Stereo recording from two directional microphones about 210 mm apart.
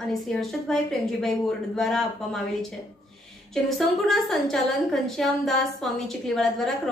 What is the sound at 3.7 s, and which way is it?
A woman's voice, centre (ahead or behind).